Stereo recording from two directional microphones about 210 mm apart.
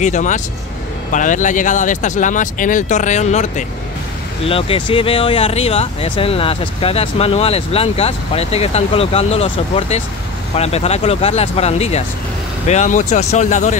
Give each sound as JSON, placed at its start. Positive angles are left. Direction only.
{"t": 0.0, "sound": "speech", "side_deg": 35}